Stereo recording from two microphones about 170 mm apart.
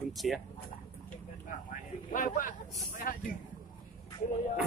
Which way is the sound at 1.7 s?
50° left (ahead or behind).